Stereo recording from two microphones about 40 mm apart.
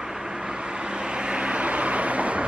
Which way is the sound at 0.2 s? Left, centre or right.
Right.